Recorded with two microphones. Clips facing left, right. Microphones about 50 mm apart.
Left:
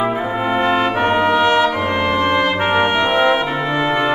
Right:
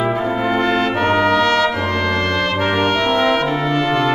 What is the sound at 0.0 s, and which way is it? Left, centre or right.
Brass instrument, centre.